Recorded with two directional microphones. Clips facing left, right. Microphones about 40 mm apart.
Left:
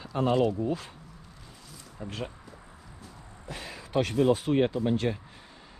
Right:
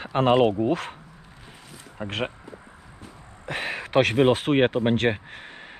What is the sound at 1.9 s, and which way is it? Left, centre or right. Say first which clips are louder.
Speech: right 8 dB; right.